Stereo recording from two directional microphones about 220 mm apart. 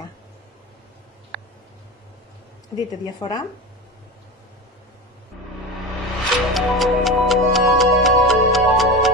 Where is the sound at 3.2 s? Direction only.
20° left (ahead or behind).